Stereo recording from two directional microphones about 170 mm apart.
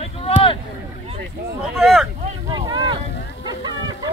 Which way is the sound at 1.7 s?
Centre (ahead or behind).